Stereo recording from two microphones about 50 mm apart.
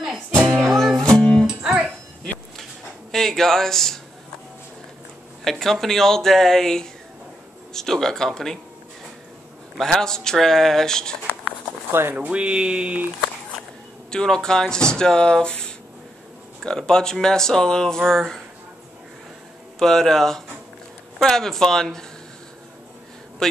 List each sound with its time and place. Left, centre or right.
0.7 s music: centre
1.5 s music: centre
3.1 s speech: centre
5.4 s speech: centre
9.8 s speech: centre
11.9 s speech: right
12.2 s speech: right
14.1 s speech: centre
19.8 s speech: centre
23.4 s speech: centre